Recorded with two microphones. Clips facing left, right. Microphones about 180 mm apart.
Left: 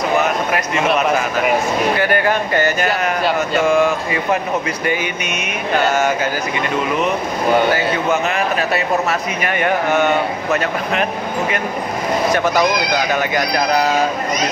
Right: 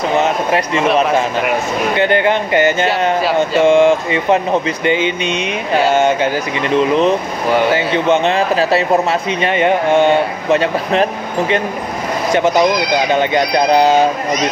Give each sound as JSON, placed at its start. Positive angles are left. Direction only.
{"t": 0.2, "sound": "speech", "side_deg": -30}
{"t": 2.0, "sound": "speech", "side_deg": -25}
{"t": 7.7, "sound": "a man's voice", "side_deg": -25}